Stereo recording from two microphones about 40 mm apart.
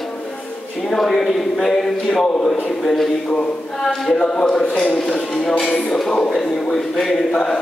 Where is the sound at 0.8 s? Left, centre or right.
Centre.